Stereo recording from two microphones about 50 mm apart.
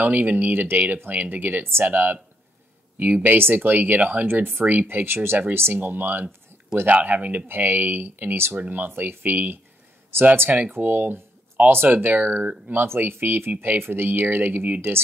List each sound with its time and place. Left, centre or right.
0.0 s speech: right
1.1 s speech: right
1.6 s speech: right
1.9 s speech: right
4.3 s speech: right
10.7 s speech: right